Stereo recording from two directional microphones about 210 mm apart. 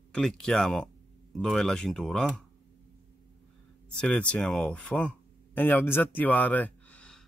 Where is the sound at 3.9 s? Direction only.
5° left (ahead or behind).